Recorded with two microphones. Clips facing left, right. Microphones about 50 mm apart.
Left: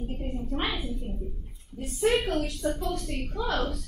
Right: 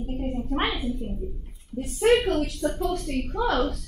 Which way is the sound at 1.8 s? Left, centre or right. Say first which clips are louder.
Right 5 dB; right.